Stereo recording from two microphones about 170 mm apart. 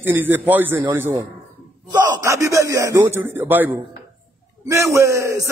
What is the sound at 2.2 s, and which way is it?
Speech, 20° right (ahead or behind).